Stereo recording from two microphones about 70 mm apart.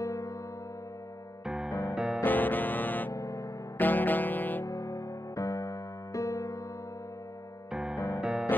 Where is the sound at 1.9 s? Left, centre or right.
Centre.